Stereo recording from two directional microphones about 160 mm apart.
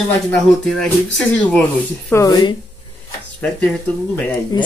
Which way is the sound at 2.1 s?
25° left (ahead or behind).